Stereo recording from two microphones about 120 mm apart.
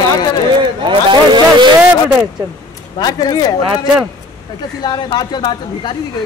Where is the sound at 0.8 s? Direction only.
40° right (ahead or behind).